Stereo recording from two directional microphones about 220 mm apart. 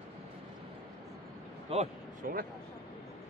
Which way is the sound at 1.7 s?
30° right (ahead or behind).